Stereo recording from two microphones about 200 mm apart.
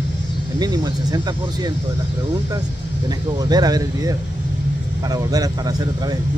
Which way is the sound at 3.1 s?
20° right (ahead or behind).